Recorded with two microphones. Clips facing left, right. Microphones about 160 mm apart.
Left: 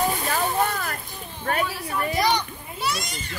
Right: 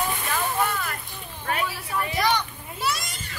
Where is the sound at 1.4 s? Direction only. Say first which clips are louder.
Left 3 dB; 40° left (ahead or behind).